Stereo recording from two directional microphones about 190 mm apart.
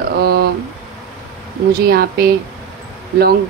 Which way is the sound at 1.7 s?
55° right (ahead or behind).